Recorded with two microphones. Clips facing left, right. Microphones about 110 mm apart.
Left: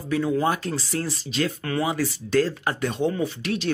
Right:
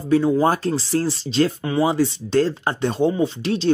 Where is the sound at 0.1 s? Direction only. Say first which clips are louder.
Right 6 dB; 30° right (ahead or behind).